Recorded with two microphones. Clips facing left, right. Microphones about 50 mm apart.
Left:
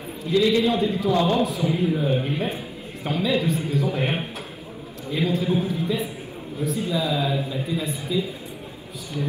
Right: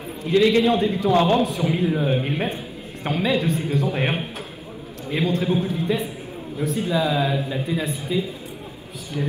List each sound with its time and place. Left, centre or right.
0.3 s a man's voice: right
5.1 s a man's voice: right